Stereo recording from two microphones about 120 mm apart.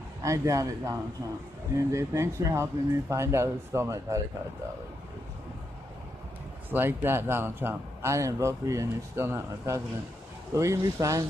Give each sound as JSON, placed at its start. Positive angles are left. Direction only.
{"t": 0.2, "sound": "speech", "side_deg": -25}
{"t": 6.7, "sound": "speech", "side_deg": -15}